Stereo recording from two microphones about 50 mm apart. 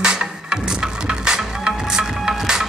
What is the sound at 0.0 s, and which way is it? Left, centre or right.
Music, centre.